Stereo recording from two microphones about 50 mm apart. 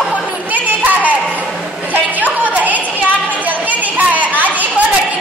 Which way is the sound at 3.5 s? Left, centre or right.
Right.